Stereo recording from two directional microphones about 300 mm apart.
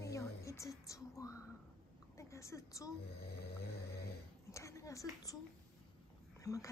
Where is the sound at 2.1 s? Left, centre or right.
Centre.